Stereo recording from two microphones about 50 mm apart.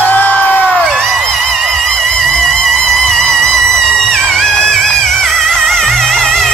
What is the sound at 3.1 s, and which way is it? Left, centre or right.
Music, centre.